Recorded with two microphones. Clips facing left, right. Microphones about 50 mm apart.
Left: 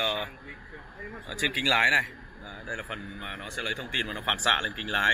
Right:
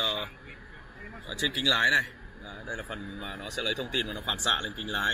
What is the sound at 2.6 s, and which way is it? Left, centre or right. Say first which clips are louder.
Speech: left 2 dB; centre.